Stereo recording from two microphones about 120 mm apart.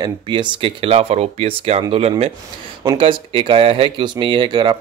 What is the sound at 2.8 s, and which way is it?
Speech, 45° right (ahead or behind).